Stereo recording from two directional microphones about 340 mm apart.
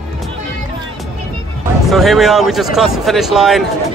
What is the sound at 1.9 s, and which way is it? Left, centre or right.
Speech, centre.